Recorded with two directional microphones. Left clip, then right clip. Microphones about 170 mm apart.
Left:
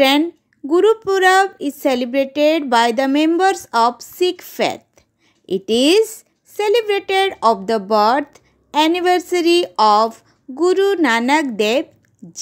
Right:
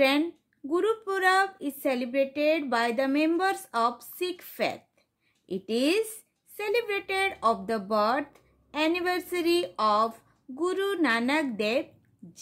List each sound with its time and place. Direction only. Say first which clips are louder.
0.7 s speech: left 13 dB; 35° left (ahead or behind)